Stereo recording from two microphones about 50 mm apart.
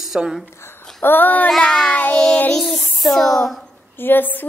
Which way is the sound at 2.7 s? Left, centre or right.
Centre.